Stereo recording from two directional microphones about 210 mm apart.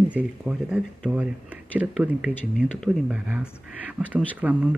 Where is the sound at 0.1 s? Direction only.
5° right (ahead or behind).